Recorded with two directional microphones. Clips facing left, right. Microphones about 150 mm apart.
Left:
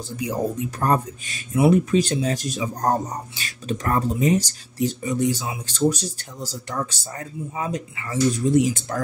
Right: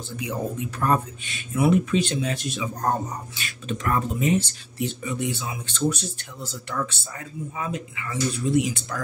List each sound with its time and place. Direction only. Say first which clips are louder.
0.2 s speech: left 4 dB; 40° left (ahead or behind)